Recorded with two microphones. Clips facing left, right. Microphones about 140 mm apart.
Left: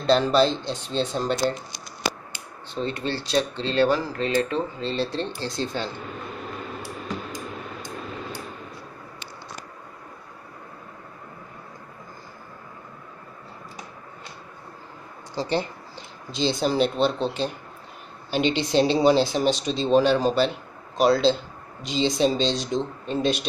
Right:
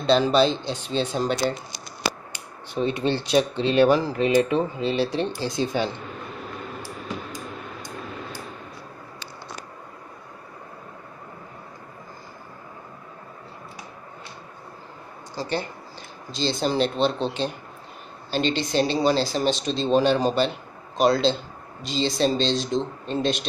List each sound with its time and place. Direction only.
0.0 s speech: centre (ahead or behind)
2.7 s speech: 15° right (ahead or behind)
15.3 s speech: 25° left (ahead or behind)
16.3 s speech: 15° left (ahead or behind)
21.8 s speech: 15° left (ahead or behind)